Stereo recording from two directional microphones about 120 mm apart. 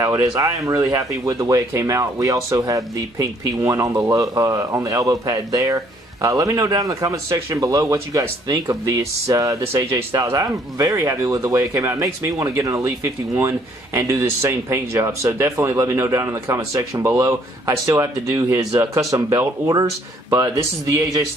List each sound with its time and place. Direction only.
0.0 s speech: 25° right (ahead or behind)